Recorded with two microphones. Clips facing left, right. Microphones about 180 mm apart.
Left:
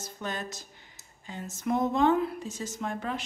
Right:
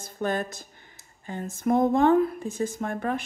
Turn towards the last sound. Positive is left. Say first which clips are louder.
# right 5 dB
turn(degrees=-50)  # may be behind; listen again after turning